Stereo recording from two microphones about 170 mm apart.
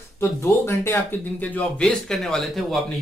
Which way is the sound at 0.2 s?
15° left (ahead or behind).